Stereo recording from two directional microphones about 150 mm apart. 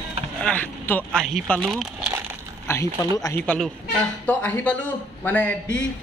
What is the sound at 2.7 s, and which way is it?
Speech, 20° left (ahead or behind).